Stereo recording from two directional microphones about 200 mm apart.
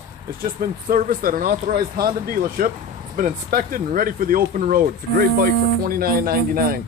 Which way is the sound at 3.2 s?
45° right (ahead or behind).